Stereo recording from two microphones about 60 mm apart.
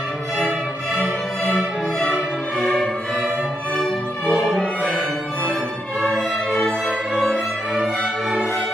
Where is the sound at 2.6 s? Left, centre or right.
Left.